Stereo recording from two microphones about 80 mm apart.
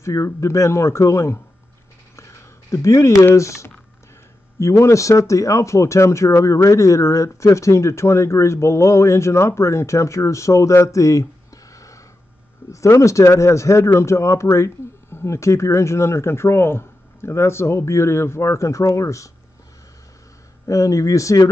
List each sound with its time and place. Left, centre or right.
0.0 s speech: left
20.6 s speech: left